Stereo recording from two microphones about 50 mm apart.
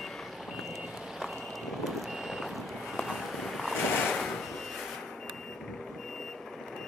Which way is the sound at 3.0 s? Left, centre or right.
Centre.